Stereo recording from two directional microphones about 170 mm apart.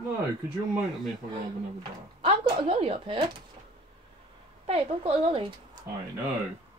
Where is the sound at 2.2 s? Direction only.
30° right (ahead or behind).